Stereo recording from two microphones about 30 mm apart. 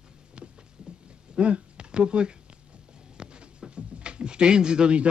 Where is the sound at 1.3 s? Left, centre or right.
Right.